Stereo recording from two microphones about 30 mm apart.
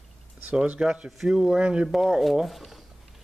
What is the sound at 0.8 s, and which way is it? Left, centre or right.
Speech, centre.